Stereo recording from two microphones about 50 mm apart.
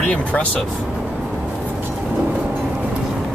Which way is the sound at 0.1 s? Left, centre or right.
Left.